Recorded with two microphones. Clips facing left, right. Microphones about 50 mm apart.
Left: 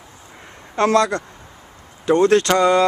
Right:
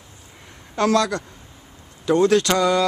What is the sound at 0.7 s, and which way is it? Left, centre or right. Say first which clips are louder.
Speech: left 3 dB; left.